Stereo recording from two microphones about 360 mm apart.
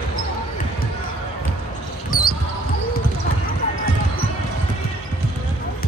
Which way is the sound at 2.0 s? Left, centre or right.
Left.